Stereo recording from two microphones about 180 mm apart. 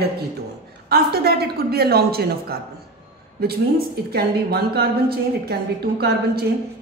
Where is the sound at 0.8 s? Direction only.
60° right (ahead or behind).